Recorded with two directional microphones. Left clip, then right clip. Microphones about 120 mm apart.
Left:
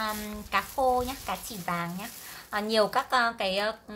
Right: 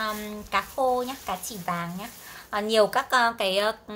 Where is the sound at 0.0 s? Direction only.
5° right (ahead or behind).